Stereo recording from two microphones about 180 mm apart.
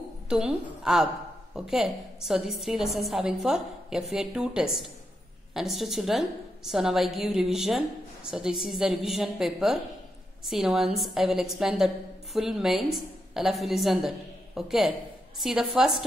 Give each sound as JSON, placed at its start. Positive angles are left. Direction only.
{"t": 0.3, "sound": "a woman's voice", "side_deg": -5}